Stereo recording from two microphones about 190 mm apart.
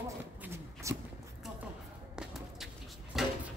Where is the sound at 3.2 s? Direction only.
Centre (ahead or behind).